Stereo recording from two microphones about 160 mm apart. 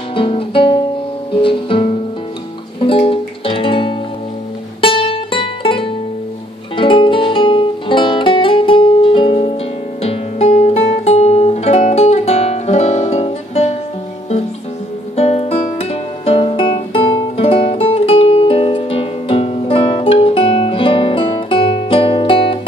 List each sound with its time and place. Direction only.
0.1 s guitar: 35° left (ahead or behind)
1.3 s music: 35° left (ahead or behind)
15.1 s music: 40° left (ahead or behind)